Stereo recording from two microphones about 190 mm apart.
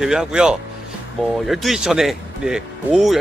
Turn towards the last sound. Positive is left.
turn(degrees=0)  # may be behind; listen again after turning